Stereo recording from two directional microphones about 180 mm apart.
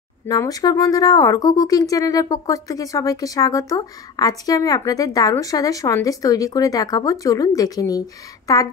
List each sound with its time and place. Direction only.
0.3 s speech: 20° left (ahead or behind)